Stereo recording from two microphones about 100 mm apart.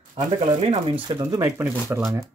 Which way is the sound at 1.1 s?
50° right (ahead or behind).